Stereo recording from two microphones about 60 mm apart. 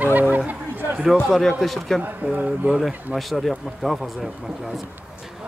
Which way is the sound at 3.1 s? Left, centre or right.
Centre.